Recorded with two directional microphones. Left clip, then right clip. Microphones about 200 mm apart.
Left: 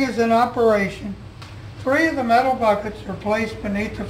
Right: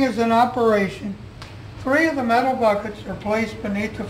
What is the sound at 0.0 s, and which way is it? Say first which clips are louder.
Speech: even; 20° right (ahead or behind).